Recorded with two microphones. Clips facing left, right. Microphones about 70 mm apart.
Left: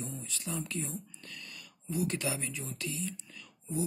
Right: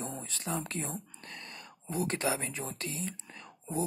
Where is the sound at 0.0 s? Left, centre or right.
Right.